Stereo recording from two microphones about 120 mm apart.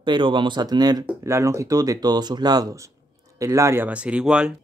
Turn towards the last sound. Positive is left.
turn(degrees=-10)  # may be behind; listen again after turning